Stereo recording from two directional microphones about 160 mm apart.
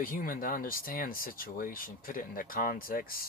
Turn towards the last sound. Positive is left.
turn(degrees=65)  # may be behind; listen again after turning